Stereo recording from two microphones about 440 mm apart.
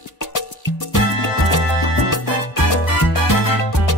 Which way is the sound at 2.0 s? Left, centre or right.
Left.